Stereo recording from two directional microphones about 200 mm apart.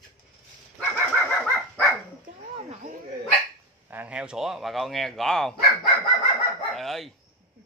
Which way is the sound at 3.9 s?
5° right (ahead or behind).